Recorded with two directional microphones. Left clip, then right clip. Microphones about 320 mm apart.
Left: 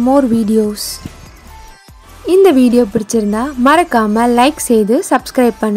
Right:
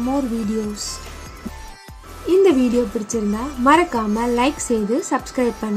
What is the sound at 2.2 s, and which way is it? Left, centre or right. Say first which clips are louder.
A woman's voice: left 6 dB; left.